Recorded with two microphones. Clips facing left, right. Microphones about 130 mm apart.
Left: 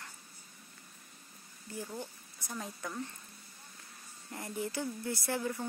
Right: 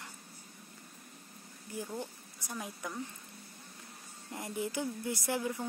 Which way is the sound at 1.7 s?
15° right (ahead or behind).